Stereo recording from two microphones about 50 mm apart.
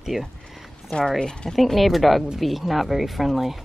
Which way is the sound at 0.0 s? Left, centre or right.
Centre.